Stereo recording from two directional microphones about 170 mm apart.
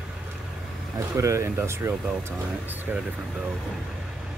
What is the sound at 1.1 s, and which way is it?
Speech, 15° right (ahead or behind).